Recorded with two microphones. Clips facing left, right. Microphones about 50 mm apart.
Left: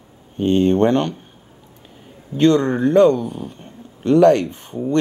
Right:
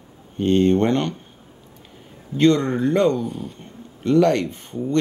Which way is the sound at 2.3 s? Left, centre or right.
Left.